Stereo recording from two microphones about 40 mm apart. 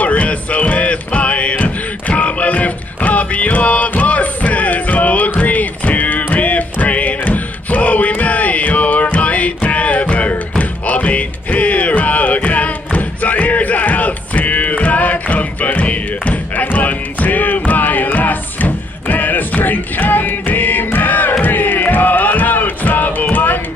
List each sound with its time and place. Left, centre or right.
0.0 s music: left